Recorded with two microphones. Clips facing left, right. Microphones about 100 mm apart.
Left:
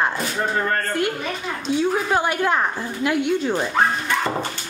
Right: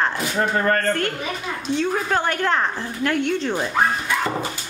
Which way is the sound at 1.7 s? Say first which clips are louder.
Left 2 dB; 10° left (ahead or behind).